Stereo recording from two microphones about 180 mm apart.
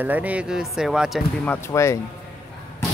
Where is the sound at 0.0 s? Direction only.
10° right (ahead or behind).